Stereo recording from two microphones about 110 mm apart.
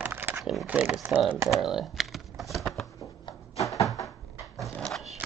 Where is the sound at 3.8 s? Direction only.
30° left (ahead or behind).